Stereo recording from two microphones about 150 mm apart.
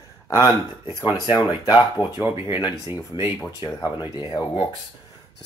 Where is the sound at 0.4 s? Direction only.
30° left (ahead or behind).